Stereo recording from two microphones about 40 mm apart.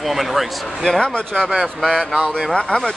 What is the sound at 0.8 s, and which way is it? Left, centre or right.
Speech, left.